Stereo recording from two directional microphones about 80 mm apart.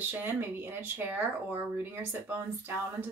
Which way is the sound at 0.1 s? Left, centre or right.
Right.